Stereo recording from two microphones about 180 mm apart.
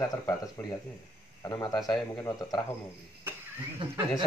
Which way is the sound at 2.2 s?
20° left (ahead or behind).